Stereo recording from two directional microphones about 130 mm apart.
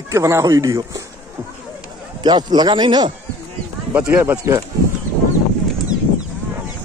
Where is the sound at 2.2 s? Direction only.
35° right (ahead or behind).